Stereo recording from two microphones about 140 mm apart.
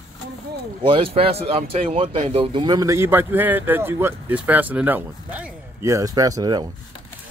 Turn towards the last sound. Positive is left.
turn(degrees=-30)  # may be behind; listen again after turning